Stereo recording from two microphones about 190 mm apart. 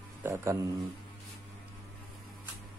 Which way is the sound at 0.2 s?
15° right (ahead or behind).